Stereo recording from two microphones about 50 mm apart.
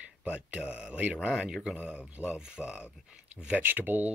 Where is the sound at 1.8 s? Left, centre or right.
Right.